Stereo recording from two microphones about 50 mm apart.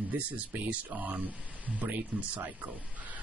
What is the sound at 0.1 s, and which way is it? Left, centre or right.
Speech, right.